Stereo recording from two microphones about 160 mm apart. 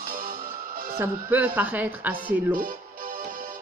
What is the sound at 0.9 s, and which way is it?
Speech, 10° right (ahead or behind).